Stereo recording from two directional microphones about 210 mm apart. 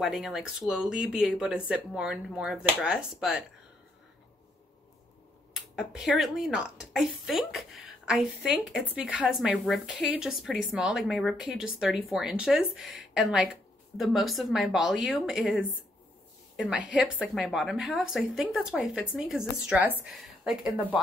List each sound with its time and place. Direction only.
0.0 s a woman's voice: centre (ahead or behind)
5.8 s a woman's voice: centre (ahead or behind)